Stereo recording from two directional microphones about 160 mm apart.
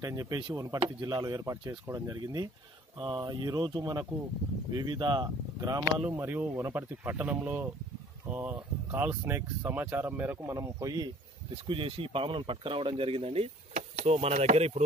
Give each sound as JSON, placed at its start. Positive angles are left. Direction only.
{"t": 0.0, "sound": "speech", "side_deg": -20}
{"t": 5.9, "sound": "speech", "side_deg": -10}
{"t": 11.5, "sound": "speech", "side_deg": -35}